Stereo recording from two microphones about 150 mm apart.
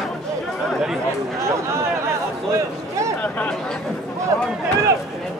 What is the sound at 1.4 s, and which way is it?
Speech, 20° right (ahead or behind).